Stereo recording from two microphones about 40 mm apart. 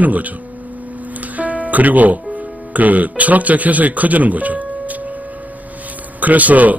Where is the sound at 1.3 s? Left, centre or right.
Right.